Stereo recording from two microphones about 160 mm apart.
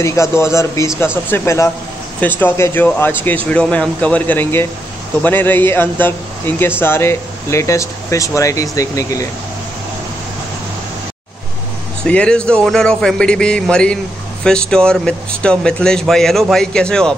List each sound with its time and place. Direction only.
0.0 s speech: 20° left (ahead or behind)
12.0 s speech: 5° left (ahead or behind)